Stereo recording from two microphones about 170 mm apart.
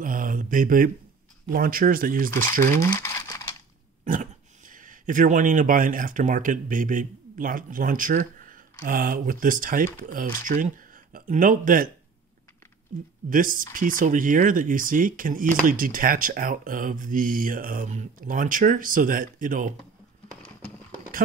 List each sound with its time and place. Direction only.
0.0 s speech: 50° right (ahead or behind)
2.9 s crumpling: 15° left (ahead or behind)
4.0 s speech: 50° right (ahead or behind)
13.3 s speech: 55° right (ahead or behind)